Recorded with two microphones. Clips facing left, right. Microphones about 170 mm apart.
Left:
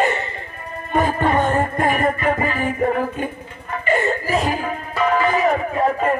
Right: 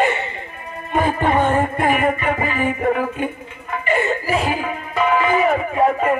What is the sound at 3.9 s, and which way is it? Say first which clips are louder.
Speech: even; 35° left (ahead or behind).